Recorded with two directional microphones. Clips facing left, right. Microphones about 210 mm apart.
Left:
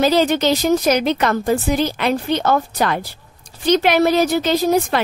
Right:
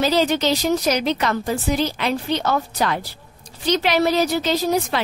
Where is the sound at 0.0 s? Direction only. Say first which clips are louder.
Left 3 dB; 50° left (ahead or behind).